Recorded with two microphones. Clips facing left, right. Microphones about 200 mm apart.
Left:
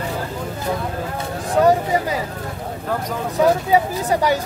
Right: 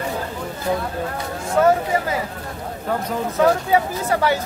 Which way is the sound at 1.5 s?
15° left (ahead or behind).